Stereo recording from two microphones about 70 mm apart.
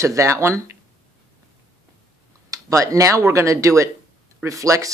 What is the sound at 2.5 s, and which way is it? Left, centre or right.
Speech, right.